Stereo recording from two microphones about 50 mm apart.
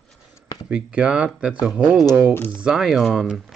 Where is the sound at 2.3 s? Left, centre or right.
Left.